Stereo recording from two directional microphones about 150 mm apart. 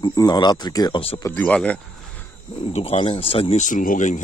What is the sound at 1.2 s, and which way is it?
Speech, 15° left (ahead or behind).